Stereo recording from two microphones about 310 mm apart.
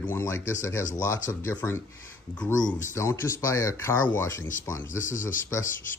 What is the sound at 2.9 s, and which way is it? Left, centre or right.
Speech, centre.